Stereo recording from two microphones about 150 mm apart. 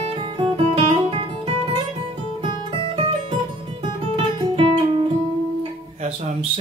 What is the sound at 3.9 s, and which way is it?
Guitar, 30° right (ahead or behind).